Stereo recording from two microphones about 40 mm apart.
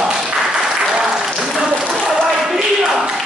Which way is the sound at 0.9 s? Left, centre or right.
Centre.